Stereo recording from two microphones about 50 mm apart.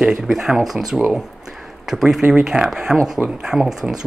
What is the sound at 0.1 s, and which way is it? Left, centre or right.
Speech, centre.